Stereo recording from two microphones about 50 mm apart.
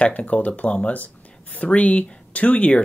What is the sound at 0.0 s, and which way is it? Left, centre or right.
Speech, left.